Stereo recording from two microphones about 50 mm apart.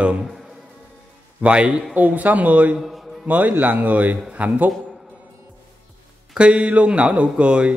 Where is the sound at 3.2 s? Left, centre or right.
Right.